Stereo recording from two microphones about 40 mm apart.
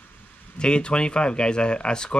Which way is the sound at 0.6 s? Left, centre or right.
Left.